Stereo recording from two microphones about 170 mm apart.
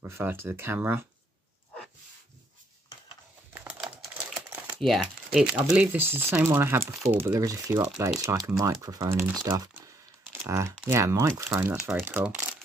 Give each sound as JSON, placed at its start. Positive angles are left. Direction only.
{"t": 0.0, "sound": "speech", "side_deg": -15}
{"t": 3.8, "sound": "typing", "side_deg": 0}
{"t": 4.5, "sound": "crumpling", "side_deg": -15}
{"t": 4.7, "sound": "speech", "side_deg": 0}